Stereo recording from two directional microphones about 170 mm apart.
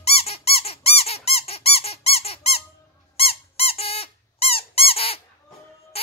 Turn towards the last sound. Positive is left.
turn(degrees=35)  # may be behind; listen again after turning